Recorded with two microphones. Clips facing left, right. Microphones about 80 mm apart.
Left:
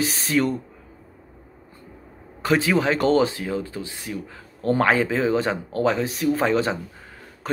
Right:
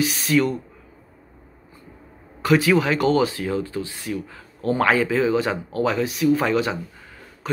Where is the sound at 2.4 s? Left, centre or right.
Left.